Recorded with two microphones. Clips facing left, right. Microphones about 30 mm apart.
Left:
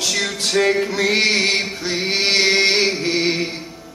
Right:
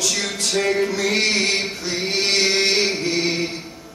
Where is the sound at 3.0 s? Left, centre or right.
Left.